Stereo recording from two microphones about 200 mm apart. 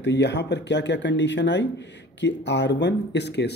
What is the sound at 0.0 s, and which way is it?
Speech, 60° left (ahead or behind).